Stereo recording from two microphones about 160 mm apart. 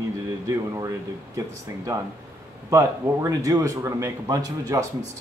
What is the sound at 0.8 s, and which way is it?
Speech, 20° right (ahead or behind).